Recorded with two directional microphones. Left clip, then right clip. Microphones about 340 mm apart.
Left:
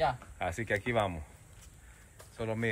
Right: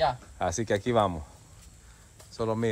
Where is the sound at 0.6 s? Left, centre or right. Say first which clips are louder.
Right 6 dB; right.